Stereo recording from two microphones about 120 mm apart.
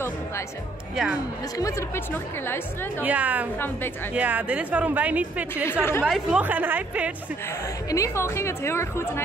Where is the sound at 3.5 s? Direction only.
15° left (ahead or behind).